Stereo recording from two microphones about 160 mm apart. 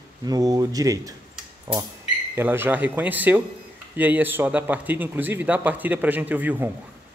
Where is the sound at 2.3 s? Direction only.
15° right (ahead or behind).